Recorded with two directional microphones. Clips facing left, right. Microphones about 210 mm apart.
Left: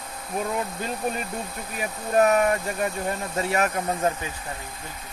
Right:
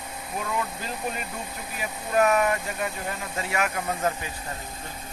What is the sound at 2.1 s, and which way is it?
Speech, 35° left (ahead or behind).